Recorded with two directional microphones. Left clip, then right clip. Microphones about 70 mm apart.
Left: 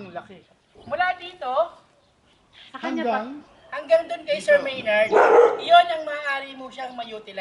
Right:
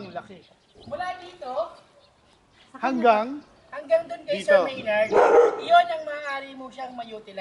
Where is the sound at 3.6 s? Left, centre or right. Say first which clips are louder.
Left 3 dB; centre.